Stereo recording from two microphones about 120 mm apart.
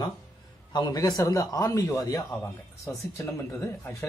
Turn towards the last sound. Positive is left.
turn(degrees=25)  # may be behind; listen again after turning